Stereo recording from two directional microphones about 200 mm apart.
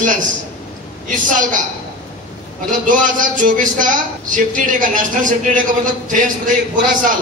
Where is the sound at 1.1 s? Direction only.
40° right (ahead or behind).